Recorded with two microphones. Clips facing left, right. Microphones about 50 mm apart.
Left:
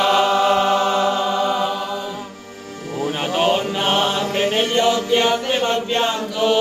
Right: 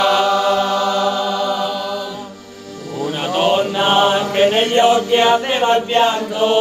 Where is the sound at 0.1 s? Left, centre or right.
Left.